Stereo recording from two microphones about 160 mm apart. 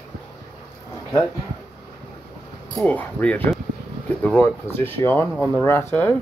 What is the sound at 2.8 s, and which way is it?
Speech, 10° left (ahead or behind).